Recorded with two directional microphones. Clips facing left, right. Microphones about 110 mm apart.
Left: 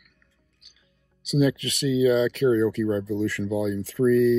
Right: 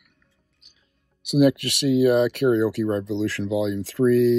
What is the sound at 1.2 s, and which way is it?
Speech, 65° right (ahead or behind).